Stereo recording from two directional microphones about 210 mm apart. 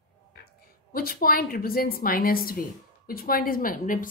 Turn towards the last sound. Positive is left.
turn(degrees=40)  # may be behind; listen again after turning